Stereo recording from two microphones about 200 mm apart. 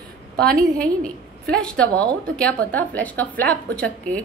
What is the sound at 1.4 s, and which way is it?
A woman's voice, 5° left (ahead or behind).